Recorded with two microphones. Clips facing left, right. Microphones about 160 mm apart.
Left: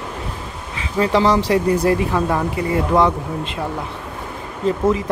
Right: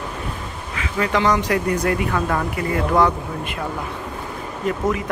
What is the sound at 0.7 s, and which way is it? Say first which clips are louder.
Speech: left 4 dB; 30° left (ahead or behind).